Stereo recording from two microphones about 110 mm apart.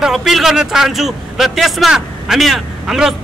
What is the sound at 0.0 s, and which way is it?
Speech, 5° right (ahead or behind).